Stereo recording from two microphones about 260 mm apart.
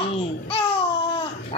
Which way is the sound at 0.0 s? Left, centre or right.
Left.